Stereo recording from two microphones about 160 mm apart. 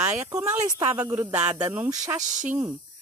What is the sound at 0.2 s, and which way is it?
Speech, 20° right (ahead or behind).